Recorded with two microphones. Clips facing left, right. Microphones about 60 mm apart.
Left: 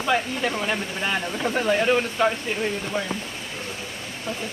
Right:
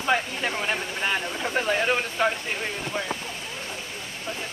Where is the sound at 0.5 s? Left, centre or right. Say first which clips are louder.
Left 2 dB; centre.